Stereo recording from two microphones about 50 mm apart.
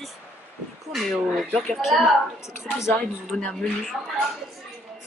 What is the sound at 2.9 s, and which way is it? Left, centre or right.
Speech, centre.